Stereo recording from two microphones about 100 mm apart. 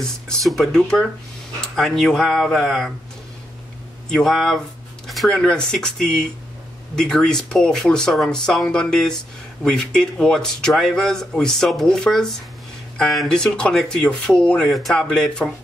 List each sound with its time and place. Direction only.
0.0 s speech: 5° left (ahead or behind)
4.1 s speech: 5° left (ahead or behind)